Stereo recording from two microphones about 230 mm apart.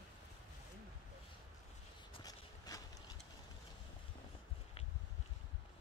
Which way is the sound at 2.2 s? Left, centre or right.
Centre.